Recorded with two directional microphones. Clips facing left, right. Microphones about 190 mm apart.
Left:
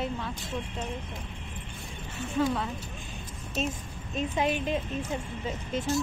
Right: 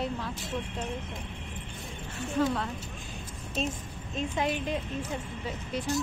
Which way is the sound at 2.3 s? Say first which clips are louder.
Even; centre (ahead or behind).